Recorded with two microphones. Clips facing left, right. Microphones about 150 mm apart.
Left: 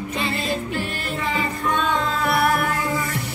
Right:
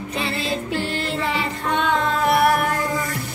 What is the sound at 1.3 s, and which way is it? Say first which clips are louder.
Music: even; 70° right (ahead or behind).